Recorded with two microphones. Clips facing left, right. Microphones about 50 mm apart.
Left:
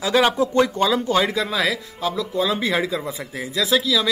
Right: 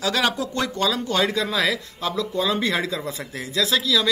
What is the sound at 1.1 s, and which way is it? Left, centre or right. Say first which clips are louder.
Speech: left 2 dB; centre.